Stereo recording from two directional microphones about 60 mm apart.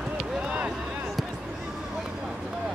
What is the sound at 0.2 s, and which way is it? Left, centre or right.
Run, right.